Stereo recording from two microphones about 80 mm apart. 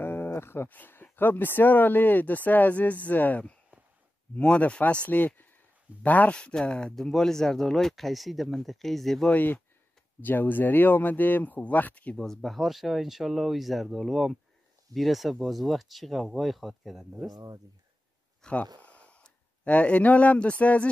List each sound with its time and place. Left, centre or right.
0.0 s speech: left; by 9.3 s centre
9.3 s speech: left
12.3 s speech: centre
17.3 s speech: right
18.4 s speech: centre